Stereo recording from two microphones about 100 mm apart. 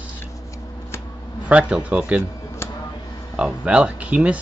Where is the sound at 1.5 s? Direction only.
15° right (ahead or behind).